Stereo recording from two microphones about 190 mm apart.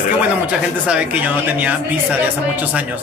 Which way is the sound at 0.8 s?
5° right (ahead or behind).